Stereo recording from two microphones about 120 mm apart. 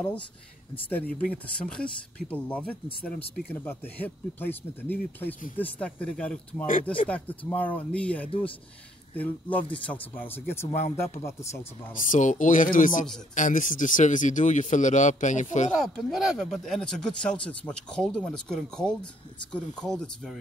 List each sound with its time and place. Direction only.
0.8 s speech: 15° left (ahead or behind)
11.9 s speech: 90° left
15.7 s speech: centre (ahead or behind)